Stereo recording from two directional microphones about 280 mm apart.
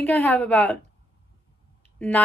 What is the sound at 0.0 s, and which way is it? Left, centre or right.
Speech, centre.